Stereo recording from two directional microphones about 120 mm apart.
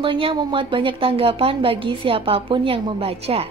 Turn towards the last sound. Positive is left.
turn(degrees=-55)  # may be behind; listen again after turning